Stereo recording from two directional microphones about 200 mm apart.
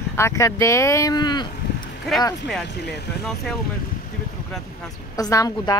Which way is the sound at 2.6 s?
55° left (ahead or behind).